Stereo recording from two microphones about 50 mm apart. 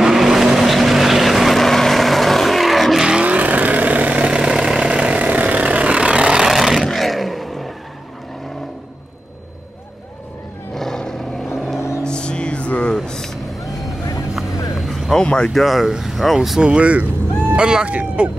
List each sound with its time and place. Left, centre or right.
0.0 s vehicle: centre
3.1 s vehicle: centre
3.3 s vehicle: right; by 6.5 s centre
6.5 s vehicle: centre
10.7 s roar: centre
11.4 s vehicle: centre
12.0 s music: centre
12.9 s vehicle: centre
15.2 s speech: centre
15.5 s speech: centre
16.6 s speech: right
17.6 s speech: centre
17.8 s speech: right